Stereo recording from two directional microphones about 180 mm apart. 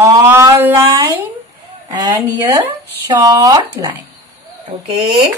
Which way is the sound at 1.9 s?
20° right (ahead or behind).